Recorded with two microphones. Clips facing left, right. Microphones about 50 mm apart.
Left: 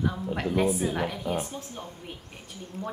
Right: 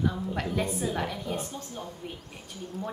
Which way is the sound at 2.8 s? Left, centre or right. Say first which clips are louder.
Left 1 dB; left.